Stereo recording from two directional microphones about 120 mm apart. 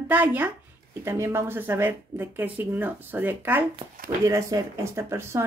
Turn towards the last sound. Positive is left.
turn(degrees=-20)  # may be behind; listen again after turning